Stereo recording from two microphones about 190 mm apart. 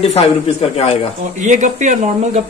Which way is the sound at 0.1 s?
35° left (ahead or behind).